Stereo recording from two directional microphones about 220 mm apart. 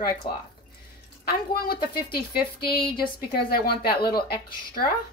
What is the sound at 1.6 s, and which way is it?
A woman's voice, 45° left (ahead or behind).